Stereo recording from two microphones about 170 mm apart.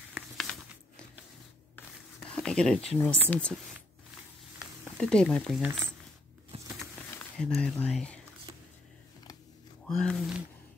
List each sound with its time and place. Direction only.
0.1 s a sound: centre (ahead or behind)
2.1 s speech: 5° left (ahead or behind)
4.6 s speech: 5° left (ahead or behind)
6.5 s a sound: 35° right (ahead or behind)
7.3 s speech: 5° left (ahead or behind)
9.8 s speech: 5° left (ahead or behind)